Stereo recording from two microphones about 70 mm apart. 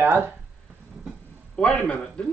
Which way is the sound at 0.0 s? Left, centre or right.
Right.